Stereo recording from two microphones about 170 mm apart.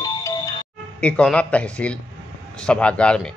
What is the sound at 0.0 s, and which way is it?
Music, 20° left (ahead or behind).